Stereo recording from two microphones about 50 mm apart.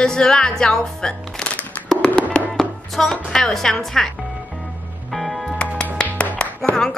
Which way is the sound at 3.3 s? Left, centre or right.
Centre.